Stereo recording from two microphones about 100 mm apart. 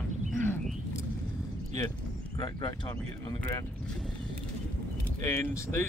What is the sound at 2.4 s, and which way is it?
Speech, 50° left (ahead or behind).